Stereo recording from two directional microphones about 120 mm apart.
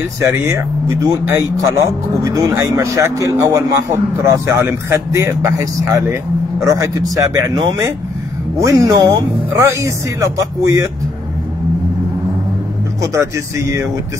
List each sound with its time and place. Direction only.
0.2 s speech: 25° right (ahead or behind)
8.5 s speech: 30° right (ahead or behind)
13.1 s speech: 25° right (ahead or behind)